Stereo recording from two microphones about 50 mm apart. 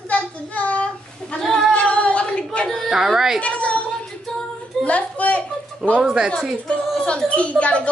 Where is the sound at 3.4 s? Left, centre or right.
Left.